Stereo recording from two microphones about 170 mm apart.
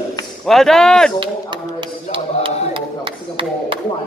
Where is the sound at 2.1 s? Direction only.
30° right (ahead or behind).